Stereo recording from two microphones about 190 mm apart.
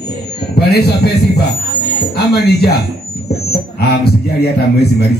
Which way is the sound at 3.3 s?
55° left (ahead or behind).